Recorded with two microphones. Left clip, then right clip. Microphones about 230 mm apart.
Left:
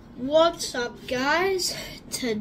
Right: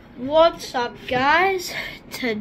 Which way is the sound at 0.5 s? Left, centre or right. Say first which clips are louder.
Right 4 dB; centre.